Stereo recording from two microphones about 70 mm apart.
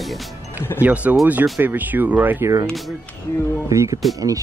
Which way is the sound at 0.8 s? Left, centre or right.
Right.